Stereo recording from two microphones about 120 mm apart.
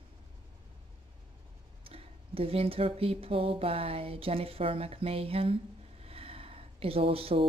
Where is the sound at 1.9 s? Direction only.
50° right (ahead or behind).